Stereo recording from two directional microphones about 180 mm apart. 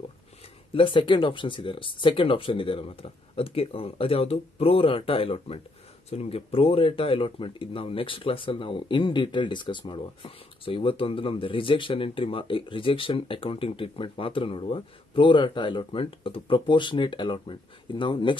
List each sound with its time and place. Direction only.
0.7 s speech: 30° left (ahead or behind)